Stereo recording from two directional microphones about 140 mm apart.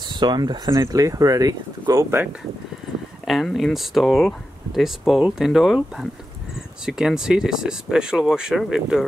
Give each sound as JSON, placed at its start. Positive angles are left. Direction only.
{"t": 0.1, "sound": "speech", "side_deg": -30}
{"t": 3.3, "sound": "speech", "side_deg": 0}